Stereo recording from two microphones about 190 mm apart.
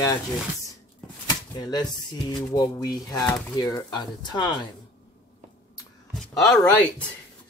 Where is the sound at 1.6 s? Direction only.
20° left (ahead or behind).